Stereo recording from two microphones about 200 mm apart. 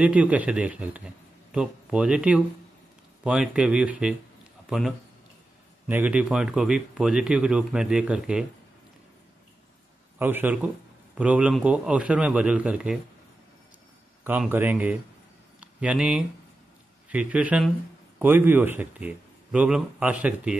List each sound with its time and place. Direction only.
0.0 s a man's voice: 5° right (ahead or behind)
10.1 s a man's voice: 10° right (ahead or behind)
14.2 s a man's voice: 10° right (ahead or behind)